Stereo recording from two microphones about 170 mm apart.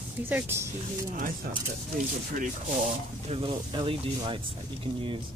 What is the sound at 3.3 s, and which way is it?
Speech, 30° right (ahead or behind).